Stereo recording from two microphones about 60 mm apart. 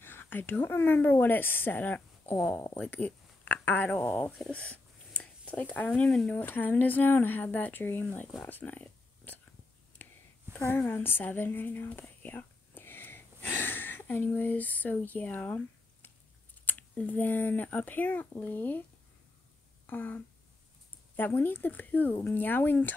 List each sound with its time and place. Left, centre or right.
0.0 s a woman's voice: left
2.3 s speech: left
2.8 s speech: left
4.0 s speech: left
4.5 s speech: left
6.3 s speech: left
8.5 s a sound: left
10.5 s a sound: right
10.9 s whispering: left
13.5 s speech: left
19.9 s speech: left
21.2 s speech: left